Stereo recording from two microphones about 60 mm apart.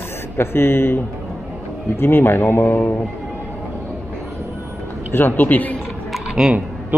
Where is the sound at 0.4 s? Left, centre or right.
Left.